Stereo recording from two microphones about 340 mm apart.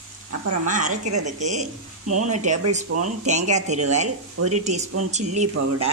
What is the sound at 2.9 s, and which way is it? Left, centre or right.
Speech, right.